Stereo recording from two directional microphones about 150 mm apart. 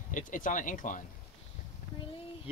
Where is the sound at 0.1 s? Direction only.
60° left (ahead or behind).